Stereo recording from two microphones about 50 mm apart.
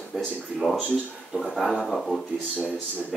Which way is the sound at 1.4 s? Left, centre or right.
Centre.